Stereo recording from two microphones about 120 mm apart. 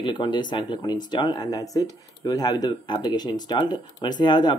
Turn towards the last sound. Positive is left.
turn(degrees=35)  # may be behind; listen again after turning